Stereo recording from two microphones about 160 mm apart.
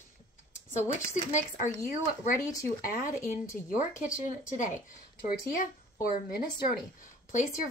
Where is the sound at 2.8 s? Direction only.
60° left (ahead or behind).